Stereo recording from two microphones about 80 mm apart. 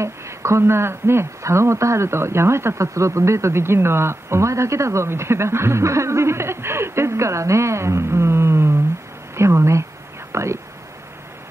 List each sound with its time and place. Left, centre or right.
0.0 s speech: right
10.3 s whispering: right